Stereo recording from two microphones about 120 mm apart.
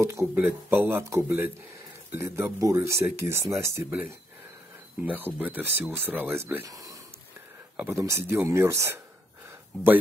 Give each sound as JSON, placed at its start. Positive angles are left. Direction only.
{"t": 0.0, "sound": "speech", "side_deg": -25}
{"t": 7.7, "sound": "speech", "side_deg": -15}